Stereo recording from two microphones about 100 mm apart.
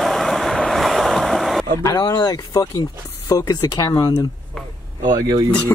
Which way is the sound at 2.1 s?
50° left (ahead or behind).